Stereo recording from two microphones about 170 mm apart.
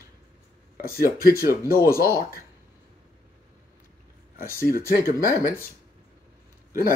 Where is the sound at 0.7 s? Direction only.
60° left (ahead or behind).